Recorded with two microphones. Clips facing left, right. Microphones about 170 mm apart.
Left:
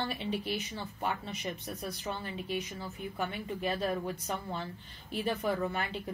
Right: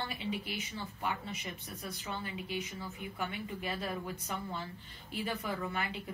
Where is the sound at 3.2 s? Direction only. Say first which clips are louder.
Left 4 dB; 40° left (ahead or behind).